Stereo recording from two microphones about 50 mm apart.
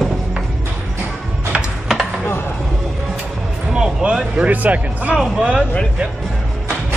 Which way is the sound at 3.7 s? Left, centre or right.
Centre.